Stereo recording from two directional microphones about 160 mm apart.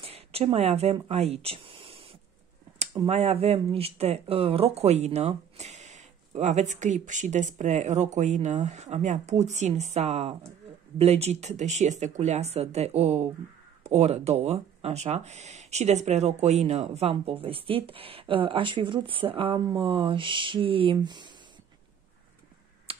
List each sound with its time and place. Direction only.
0.0 s speech: 40° right (ahead or behind)
3.1 s speech: 40° right (ahead or behind)
22.9 s finger snapping: 35° right (ahead or behind)